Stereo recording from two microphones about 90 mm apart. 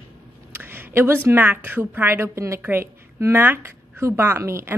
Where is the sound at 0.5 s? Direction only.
25° right (ahead or behind).